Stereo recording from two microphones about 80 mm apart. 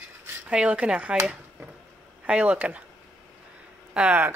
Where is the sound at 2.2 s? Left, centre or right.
Centre.